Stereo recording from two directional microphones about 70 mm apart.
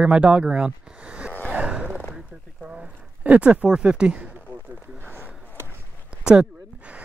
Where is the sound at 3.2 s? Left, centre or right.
Centre.